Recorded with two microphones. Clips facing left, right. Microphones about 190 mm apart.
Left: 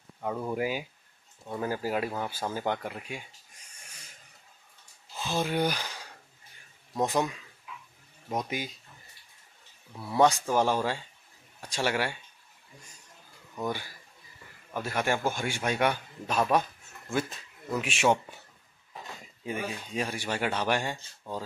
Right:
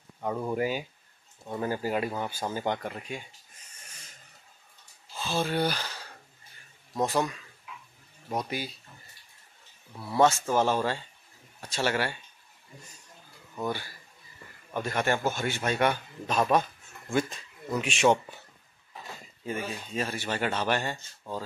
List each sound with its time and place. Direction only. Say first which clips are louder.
0.2 s speech: right 1 dB; centre (ahead or behind)
3.8 s a sound: even; 10° left (ahead or behind)
5.1 s a man's voice: even; 15° left (ahead or behind)
8.4 s a man's voice: even; 15° left (ahead or behind)
9.9 s speech: even; centre (ahead or behind)
10.5 s a man's voice: right 1 dB; 10° left (ahead or behind)
14.7 s a man's voice: right 1 dB; 5° left (ahead or behind)
19.4 s a man's voice: even; 10° left (ahead or behind)